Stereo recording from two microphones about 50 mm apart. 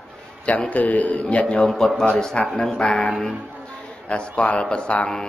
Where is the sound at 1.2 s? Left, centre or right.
Centre.